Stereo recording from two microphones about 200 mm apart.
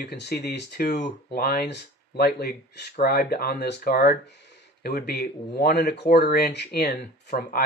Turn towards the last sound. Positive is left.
turn(degrees=50)  # may be behind; listen again after turning